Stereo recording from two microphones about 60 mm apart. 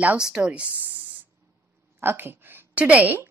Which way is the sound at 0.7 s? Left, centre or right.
Right.